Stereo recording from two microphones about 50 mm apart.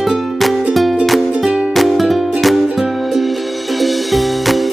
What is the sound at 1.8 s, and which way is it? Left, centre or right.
Music, centre.